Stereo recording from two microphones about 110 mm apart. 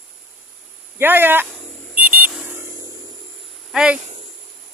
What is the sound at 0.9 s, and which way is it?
Speech, 20° right (ahead or behind).